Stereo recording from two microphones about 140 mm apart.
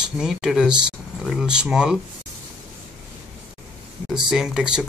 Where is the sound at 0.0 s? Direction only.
5° right (ahead or behind).